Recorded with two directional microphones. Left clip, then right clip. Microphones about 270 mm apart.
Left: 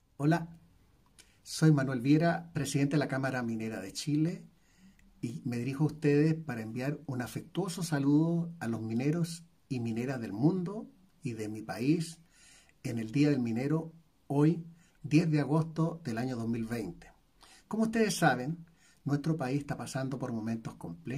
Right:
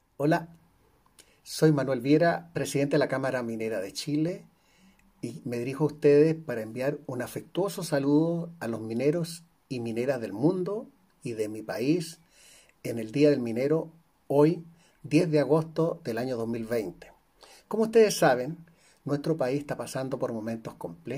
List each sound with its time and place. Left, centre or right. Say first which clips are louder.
1.1 s speech: right 3 dB; centre